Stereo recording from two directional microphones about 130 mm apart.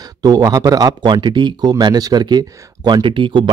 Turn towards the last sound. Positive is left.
turn(degrees=-40)  # may be behind; listen again after turning